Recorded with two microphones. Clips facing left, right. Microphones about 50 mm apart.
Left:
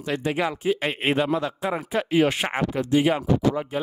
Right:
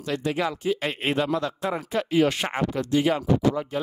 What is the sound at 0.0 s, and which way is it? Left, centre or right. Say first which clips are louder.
Speech: left 1 dB; left.